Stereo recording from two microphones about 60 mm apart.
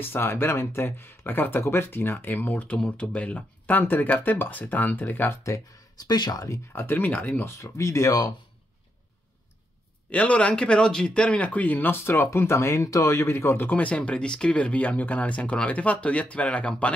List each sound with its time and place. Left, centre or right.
0.0 s speech: left
6.0 s speech: left
6.5 s speech: left
7.4 s speech: left
10.0 s speech: left
13.3 s speech: left
13.7 s speech: left